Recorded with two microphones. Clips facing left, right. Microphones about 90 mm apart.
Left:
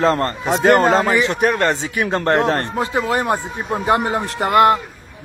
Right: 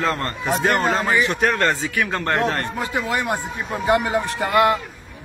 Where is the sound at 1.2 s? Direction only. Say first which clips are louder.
Left 2 dB; 20° left (ahead or behind).